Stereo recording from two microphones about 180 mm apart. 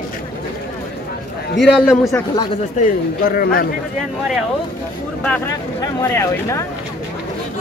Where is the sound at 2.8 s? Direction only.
55° left (ahead or behind).